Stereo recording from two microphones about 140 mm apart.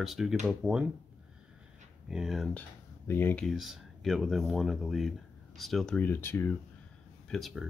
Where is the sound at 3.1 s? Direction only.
15° left (ahead or behind).